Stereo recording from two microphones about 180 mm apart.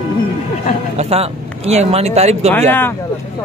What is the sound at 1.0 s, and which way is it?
Speech, 35° right (ahead or behind).